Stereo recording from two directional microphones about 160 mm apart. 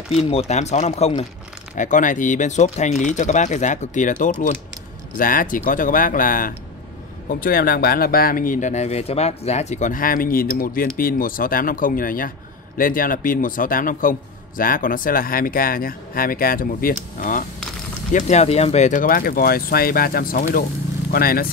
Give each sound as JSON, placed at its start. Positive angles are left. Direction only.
{"t": 0.1, "sound": "speech", "side_deg": 40}
{"t": 1.8, "sound": "speech", "side_deg": 55}
{"t": 18.1, "sound": "speech", "side_deg": 45}